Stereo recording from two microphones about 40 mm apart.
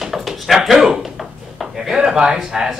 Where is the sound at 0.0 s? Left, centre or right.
Centre.